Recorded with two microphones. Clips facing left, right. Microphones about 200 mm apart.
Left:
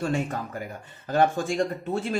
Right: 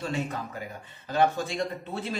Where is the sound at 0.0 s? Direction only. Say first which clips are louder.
Left 4 dB; 50° left (ahead or behind).